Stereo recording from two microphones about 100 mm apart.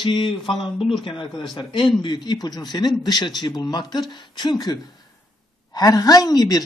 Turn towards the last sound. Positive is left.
turn(degrees=40)  # may be behind; listen again after turning